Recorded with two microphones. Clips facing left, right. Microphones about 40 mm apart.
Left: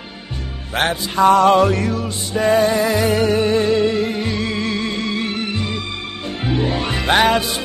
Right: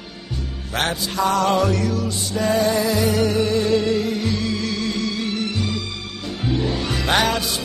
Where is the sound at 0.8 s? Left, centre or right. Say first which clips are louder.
Left 5 dB; left.